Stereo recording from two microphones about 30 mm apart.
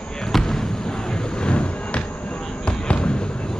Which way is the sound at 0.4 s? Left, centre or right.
Left.